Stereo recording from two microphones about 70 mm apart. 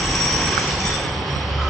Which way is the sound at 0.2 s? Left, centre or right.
Centre.